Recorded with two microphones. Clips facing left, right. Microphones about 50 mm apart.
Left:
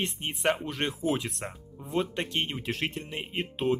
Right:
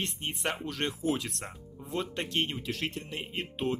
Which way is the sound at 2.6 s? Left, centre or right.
Left.